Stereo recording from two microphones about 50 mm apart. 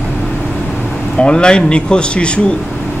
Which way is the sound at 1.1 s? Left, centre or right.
Centre.